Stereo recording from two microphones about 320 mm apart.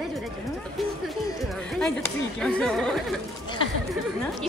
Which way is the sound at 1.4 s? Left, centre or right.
Centre.